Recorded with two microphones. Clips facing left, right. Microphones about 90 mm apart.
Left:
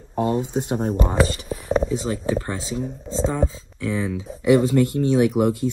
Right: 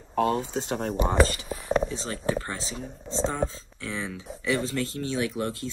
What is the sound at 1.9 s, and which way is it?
Speech, 15° left (ahead or behind).